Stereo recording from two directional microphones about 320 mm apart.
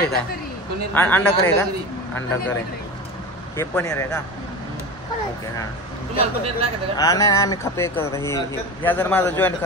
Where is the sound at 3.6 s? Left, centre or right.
Centre.